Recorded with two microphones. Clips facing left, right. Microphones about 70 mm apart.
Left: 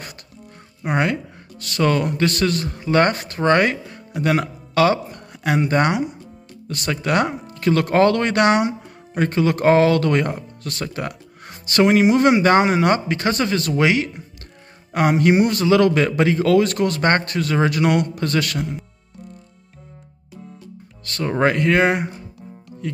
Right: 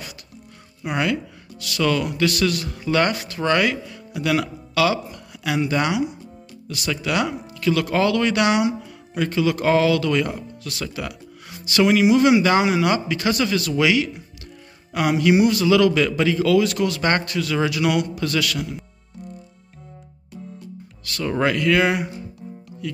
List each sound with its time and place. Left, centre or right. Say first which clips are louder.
0.8 s speech: left 2 dB; left
21.0 s speech: left 3 dB; left